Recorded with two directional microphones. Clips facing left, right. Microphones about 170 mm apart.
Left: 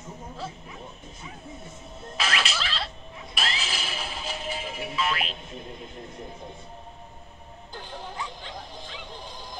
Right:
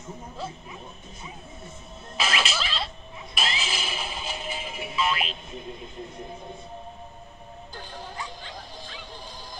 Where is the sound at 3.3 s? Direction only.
Centre (ahead or behind).